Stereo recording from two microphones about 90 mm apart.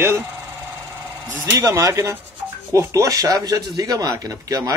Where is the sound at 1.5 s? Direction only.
35° right (ahead or behind).